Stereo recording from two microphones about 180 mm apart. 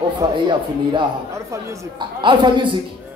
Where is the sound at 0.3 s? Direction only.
25° right (ahead or behind).